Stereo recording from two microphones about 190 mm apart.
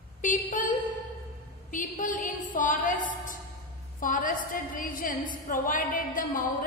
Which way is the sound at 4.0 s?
45° left (ahead or behind).